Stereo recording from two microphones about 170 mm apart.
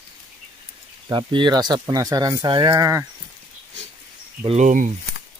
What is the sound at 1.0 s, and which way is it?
Speech, 25° right (ahead or behind).